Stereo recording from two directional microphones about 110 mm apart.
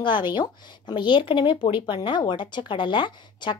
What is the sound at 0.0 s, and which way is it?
Speech, 45° left (ahead or behind).